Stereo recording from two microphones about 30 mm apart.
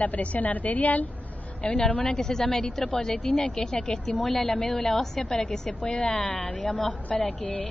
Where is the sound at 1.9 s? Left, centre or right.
Left.